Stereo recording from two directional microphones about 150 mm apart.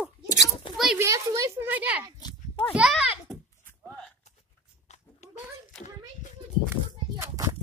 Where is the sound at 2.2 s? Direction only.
30° left (ahead or behind).